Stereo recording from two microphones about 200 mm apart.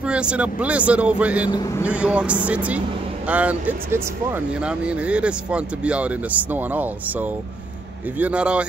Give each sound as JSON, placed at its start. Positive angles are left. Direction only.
{"t": 0.0, "sound": "speech", "side_deg": -5}
{"t": 1.5, "sound": "speech", "side_deg": 20}
{"t": 1.9, "sound": "speech", "side_deg": -5}